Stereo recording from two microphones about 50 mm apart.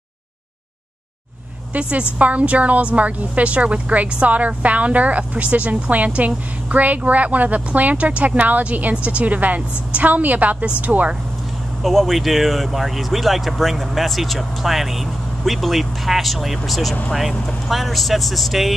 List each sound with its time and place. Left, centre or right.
1.7 s a woman's voice: right
11.8 s speech: centre